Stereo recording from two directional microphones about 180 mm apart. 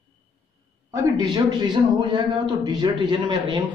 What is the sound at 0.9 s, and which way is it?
A man's voice, 25° right (ahead or behind).